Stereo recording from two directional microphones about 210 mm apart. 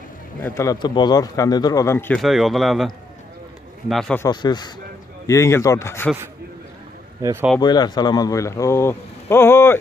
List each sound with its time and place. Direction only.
0.4 s speech: 15° left (ahead or behind)
3.9 s a man's voice: centre (ahead or behind)
4.2 s a man's voice: 20° left (ahead or behind)
7.2 s speech: 15° right (ahead or behind)
7.6 s speech: 20° left (ahead or behind)